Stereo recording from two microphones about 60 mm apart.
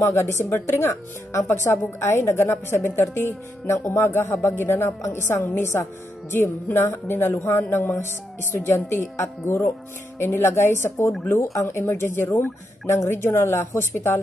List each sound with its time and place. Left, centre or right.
0.0 s speech: left
6.3 s speech: left
11.2 s speech: left